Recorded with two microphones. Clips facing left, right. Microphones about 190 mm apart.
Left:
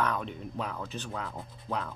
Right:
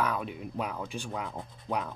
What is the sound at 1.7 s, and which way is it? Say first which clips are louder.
Rub: right 2 dB; 15° right (ahead or behind).